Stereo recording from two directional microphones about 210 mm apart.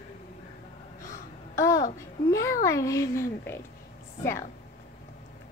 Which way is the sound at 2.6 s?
15° left (ahead or behind).